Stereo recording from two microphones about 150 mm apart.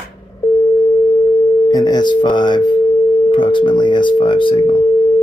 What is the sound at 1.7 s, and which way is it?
Speech, 25° left (ahead or behind).